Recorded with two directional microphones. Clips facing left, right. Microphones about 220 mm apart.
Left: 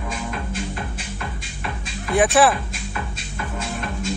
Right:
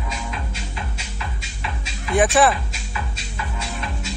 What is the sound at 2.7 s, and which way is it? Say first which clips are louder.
Music: left 2 dB; 50° left (ahead or behind).